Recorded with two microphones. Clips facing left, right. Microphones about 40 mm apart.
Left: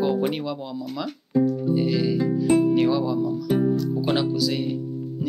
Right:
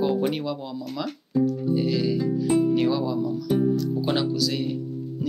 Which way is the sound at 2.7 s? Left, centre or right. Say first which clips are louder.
Left 2 dB; centre.